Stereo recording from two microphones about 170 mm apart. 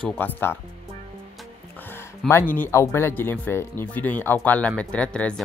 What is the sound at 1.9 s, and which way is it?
Speech, 15° left (ahead or behind).